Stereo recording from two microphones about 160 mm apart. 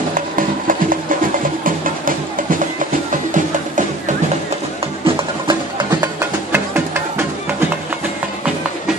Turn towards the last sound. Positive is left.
turn(degrees=-15)  # may be behind; listen again after turning